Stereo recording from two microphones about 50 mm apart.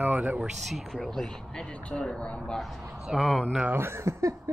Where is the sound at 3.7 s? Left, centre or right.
Right.